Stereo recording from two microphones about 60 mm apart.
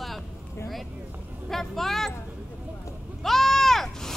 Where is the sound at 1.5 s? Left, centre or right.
Centre.